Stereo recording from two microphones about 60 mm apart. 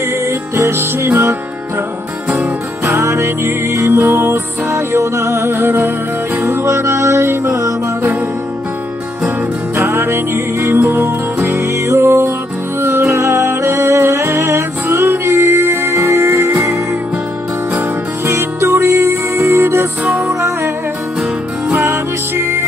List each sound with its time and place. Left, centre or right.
0.3 s music: right
2.8 s music: right
6.6 s music: right
9.8 s music: right
18.2 s music: right
21.9 s music: right